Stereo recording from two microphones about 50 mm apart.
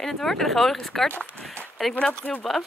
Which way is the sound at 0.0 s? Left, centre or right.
Centre.